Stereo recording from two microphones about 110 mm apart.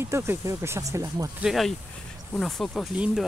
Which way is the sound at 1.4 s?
Centre (ahead or behind).